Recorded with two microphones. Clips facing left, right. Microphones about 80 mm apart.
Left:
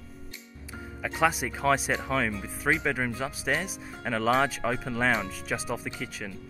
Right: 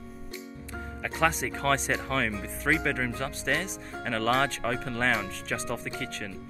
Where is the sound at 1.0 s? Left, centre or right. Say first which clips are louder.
Left 1 dB; centre.